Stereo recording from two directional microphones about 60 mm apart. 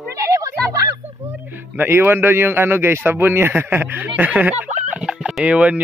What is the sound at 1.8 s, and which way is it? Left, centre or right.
A man's voice, right.